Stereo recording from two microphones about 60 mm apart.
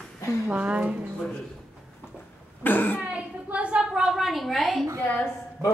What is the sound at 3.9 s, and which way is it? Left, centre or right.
Speech, centre.